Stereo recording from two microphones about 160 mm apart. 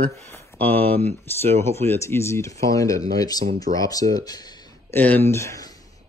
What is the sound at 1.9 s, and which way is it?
Speech, 15° left (ahead or behind).